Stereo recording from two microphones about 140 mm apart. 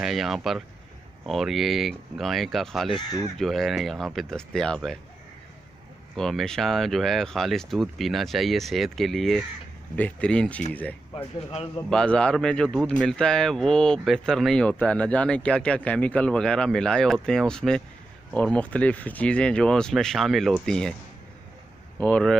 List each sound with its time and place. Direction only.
0.0 s speech: centre (ahead or behind)
6.1 s speech: 5° left (ahead or behind)
11.1 s speech: 45° left (ahead or behind)
11.9 s speech: 5° left (ahead or behind)
22.0 s speech: 5° left (ahead or behind)